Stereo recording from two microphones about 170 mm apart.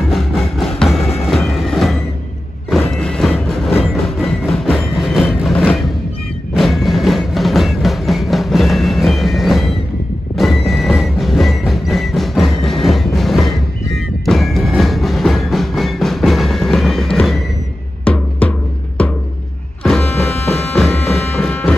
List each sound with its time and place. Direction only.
0.0 s music: centre (ahead or behind)
1.2 s train: centre (ahead or behind)
2.8 s music: 5° left (ahead or behind)
19.8 s vehicle: 5° left (ahead or behind)
20.7 s music: centre (ahead or behind)